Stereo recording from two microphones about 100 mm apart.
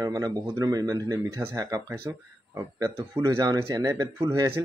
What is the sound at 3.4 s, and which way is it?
Speech, 40° right (ahead or behind).